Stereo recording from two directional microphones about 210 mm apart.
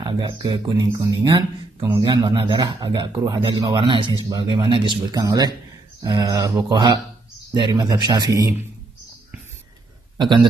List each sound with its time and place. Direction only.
0.0 s a man's voice: 20° right (ahead or behind)